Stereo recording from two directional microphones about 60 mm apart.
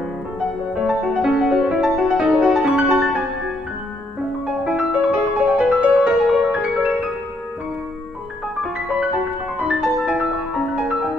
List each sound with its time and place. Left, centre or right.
0.7 s music: centre
4.6 s music: centre
9.6 s music: centre